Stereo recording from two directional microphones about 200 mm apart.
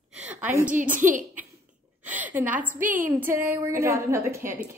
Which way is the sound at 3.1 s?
10° right (ahead or behind).